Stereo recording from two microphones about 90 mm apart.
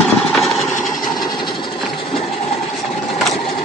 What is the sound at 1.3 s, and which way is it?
Engine, 60° left (ahead or behind).